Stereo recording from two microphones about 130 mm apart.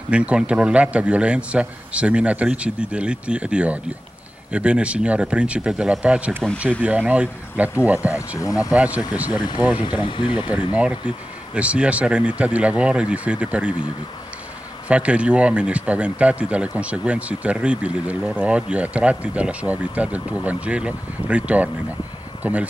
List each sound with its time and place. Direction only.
0.1 s speech: 10° right (ahead or behind)
8.4 s speech: 25° left (ahead or behind)
8.7 s speech: 10° right (ahead or behind)
9.4 s speech: 35° left (ahead or behind)
10.7 s speech: 10° right (ahead or behind)
14.9 s speech: 10° right (ahead or behind)